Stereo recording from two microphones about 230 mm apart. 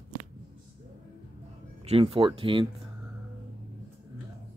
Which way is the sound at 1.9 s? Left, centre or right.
Right.